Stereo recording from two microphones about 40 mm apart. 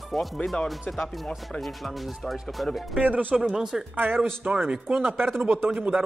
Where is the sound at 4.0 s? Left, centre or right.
Right.